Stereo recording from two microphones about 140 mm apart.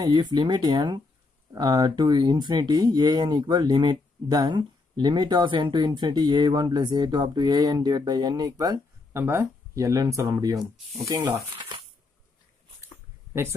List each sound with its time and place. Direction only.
0.0 s speech: 30° right (ahead or behind)